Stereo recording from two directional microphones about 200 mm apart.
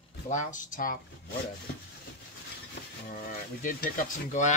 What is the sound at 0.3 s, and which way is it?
Speech, 40° left (ahead or behind).